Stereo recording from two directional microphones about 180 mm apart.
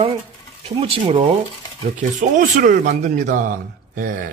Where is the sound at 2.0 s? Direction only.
45° right (ahead or behind).